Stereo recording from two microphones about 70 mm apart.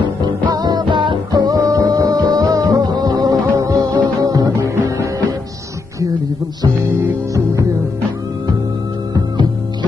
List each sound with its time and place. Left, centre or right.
0.0 s music: right